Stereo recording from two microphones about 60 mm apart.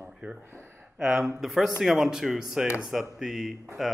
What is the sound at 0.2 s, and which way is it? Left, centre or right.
Speech, right.